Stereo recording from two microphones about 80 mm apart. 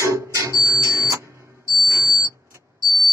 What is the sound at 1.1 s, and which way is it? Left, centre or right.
Music, right.